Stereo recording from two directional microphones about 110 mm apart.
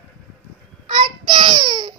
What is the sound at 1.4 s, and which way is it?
Baby cry, 40° right (ahead or behind).